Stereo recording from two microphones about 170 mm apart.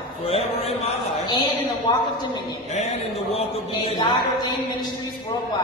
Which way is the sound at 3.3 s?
30° left (ahead or behind).